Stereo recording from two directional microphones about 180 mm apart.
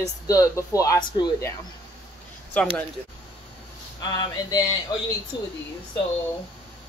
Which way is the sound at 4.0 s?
20° left (ahead or behind).